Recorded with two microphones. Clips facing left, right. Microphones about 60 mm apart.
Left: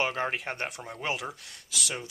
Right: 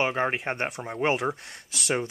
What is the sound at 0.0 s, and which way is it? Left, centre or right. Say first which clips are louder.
Speech: right 4 dB; centre.